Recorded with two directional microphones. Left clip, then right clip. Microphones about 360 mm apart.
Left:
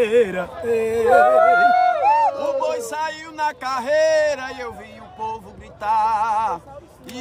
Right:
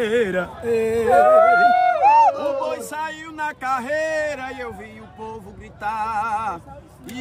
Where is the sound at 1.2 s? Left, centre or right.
Left.